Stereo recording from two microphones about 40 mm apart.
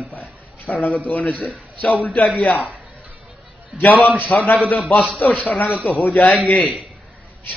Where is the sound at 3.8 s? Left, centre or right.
Left.